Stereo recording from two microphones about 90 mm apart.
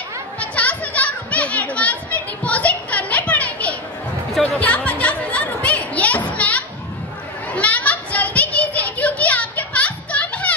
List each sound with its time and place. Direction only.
0.4 s children playing: 15° left (ahead or behind)
4.4 s a sound: 15° left (ahead or behind)
7.5 s children playing: 15° left (ahead or behind)